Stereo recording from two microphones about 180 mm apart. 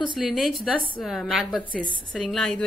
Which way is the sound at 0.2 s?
Centre (ahead or behind).